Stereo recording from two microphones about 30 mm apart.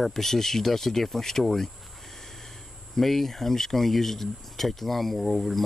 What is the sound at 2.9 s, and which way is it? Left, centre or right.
Speech, centre.